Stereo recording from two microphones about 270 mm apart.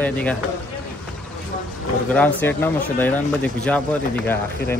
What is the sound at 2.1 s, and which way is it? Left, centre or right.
Speech, centre.